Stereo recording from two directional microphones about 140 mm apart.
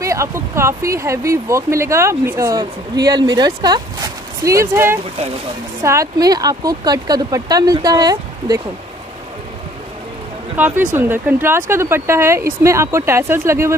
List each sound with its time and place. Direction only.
0.0 s speech: 20° right (ahead or behind)
10.5 s speech: 15° right (ahead or behind)